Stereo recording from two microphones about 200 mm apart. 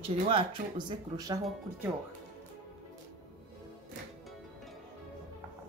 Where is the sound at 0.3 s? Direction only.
25° right (ahead or behind).